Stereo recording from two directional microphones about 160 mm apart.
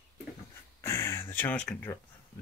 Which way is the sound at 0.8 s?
15° left (ahead or behind).